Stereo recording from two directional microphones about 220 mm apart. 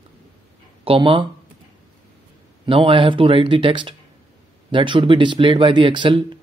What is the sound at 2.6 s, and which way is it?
Speech, 25° right (ahead or behind).